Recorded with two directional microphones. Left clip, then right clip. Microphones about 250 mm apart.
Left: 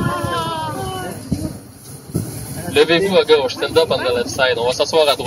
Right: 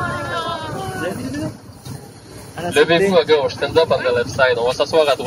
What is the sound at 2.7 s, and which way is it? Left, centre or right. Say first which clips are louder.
Speech: even; left.